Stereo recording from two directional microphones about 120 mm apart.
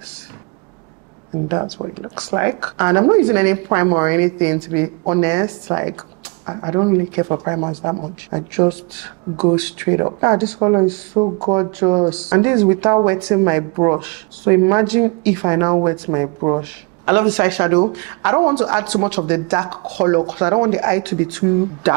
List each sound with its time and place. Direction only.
1.5 s speech: 30° right (ahead or behind)